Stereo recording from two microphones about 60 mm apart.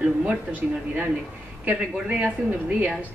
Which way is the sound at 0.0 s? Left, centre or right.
Centre.